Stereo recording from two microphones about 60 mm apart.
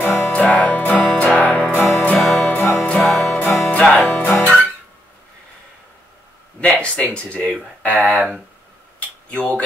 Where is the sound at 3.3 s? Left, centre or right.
Left.